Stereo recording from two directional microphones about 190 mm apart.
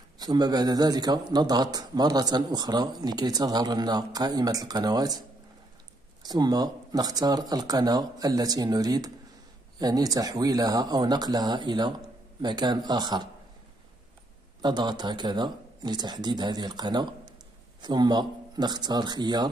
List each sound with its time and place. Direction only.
0.2 s speech: 20° right (ahead or behind)
6.2 s speech: 20° right (ahead or behind)
14.6 s speech: 25° right (ahead or behind)